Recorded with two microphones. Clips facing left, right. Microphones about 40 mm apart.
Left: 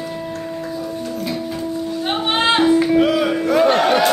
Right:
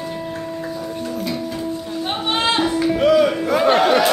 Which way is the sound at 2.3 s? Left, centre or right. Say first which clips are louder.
Left 3 dB; left.